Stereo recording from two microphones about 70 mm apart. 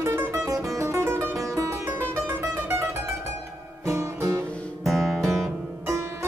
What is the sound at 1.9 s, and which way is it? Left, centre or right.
Music, right.